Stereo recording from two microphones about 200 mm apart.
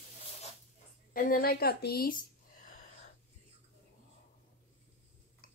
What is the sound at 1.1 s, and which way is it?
A woman's voice, 45° left (ahead or behind).